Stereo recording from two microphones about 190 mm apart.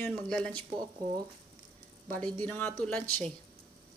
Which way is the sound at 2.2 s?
10° left (ahead or behind).